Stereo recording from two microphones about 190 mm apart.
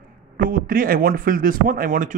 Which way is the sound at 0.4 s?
50° right (ahead or behind).